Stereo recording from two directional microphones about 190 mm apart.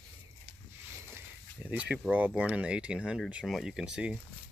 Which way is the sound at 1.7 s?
5° right (ahead or behind).